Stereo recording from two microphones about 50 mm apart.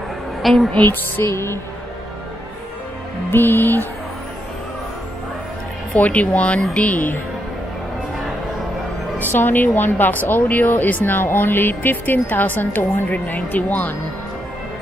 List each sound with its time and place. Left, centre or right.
0.4 s a woman's voice: centre
0.8 s music: left
3.3 s speech: left
5.9 s speech: left
9.2 s speech: left